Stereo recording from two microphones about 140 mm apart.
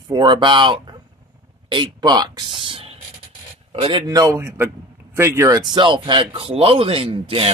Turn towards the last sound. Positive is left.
turn(degrees=-45)  # may be behind; listen again after turning